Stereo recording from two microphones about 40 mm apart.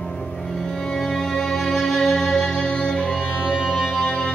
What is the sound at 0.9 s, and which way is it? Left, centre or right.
Music, centre.